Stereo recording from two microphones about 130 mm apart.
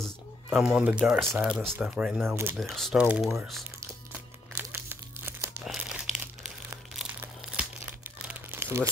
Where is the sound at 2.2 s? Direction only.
20° right (ahead or behind).